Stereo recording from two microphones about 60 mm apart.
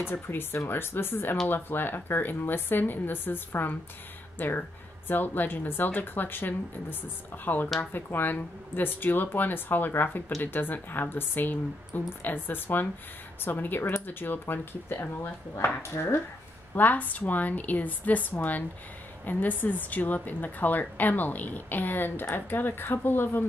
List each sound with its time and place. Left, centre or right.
0.1 s a woman's voice: left
16.7 s a woman's voice: left